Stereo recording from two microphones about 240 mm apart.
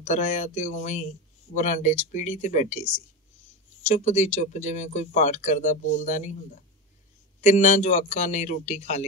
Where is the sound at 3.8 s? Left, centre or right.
Left.